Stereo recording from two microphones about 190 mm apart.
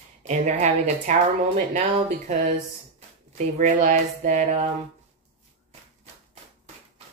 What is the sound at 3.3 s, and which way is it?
Speech, 40° right (ahead or behind).